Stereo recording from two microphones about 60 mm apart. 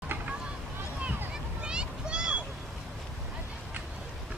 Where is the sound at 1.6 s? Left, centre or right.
Centre.